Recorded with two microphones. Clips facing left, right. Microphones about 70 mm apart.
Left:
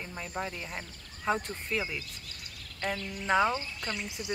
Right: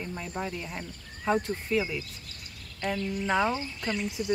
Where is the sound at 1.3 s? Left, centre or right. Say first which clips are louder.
Right 4 dB; centre.